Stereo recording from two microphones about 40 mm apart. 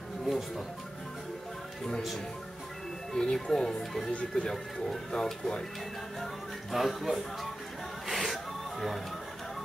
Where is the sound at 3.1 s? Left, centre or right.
Centre.